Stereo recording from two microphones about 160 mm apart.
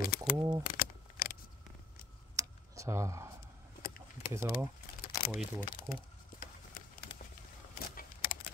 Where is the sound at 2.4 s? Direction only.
20° right (ahead or behind).